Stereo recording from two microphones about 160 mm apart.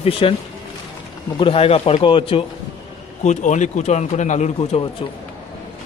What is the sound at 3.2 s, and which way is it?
Speech, 50° left (ahead or behind).